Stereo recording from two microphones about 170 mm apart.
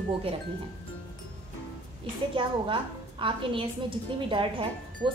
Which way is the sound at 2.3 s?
30° right (ahead or behind).